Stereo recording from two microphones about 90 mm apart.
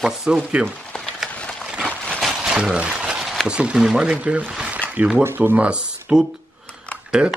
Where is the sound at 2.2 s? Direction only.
5° right (ahead or behind).